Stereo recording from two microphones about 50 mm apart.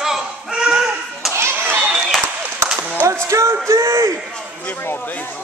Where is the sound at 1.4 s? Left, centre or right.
Right.